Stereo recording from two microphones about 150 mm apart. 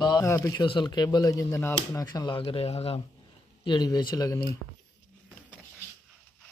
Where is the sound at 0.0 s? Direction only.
30° left (ahead or behind).